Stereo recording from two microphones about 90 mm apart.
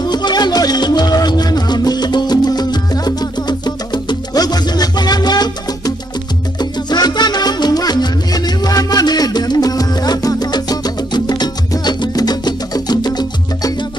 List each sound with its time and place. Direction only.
0.0 s music: 50° left (ahead or behind)